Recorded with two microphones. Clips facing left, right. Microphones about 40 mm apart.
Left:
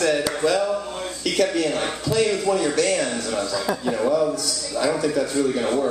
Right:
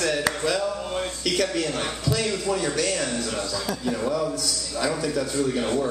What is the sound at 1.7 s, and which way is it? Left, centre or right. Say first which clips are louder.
A man's voice: left 3 dB; centre.